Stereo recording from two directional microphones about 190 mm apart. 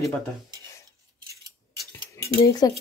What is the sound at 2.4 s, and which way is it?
Speech, 20° left (ahead or behind).